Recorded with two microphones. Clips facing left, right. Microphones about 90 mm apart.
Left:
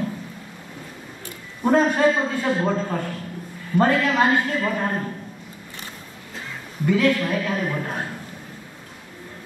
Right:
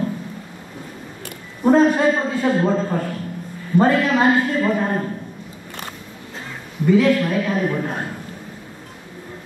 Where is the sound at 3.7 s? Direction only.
5° right (ahead or behind).